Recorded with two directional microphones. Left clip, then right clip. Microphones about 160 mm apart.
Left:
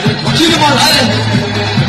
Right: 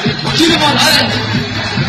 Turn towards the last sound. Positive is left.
turn(degrees=35)  # may be behind; listen again after turning